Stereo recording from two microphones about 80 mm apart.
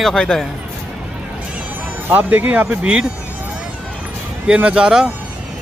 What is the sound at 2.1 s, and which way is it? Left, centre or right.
Speech, centre.